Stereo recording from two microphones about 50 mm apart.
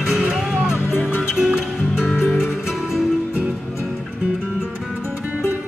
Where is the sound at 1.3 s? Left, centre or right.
Centre.